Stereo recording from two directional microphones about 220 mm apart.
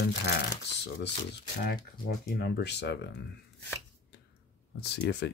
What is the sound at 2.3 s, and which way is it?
Speech, 50° left (ahead or behind).